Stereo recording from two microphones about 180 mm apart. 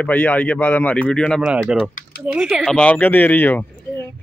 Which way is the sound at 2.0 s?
60° left (ahead or behind).